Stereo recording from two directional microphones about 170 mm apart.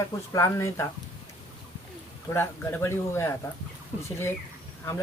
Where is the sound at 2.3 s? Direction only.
15° left (ahead or behind).